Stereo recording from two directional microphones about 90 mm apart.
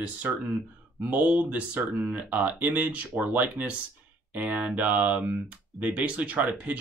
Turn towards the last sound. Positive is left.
turn(degrees=-15)  # may be behind; listen again after turning